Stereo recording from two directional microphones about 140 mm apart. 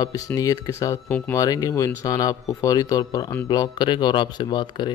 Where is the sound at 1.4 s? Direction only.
25° left (ahead or behind).